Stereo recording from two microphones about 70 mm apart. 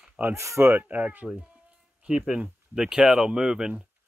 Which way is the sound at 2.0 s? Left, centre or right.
Centre.